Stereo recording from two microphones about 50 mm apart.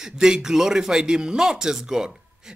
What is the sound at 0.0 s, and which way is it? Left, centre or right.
Speech, centre.